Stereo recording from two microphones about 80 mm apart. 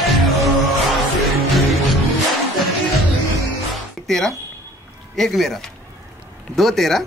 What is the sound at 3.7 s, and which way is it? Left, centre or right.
Music, centre.